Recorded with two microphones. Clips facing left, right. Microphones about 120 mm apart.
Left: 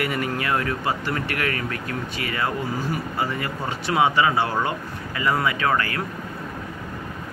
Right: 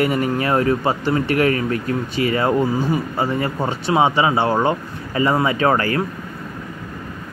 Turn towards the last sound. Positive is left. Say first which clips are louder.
# right 6 dB
turn(degrees=-35)  # may be behind; listen again after turning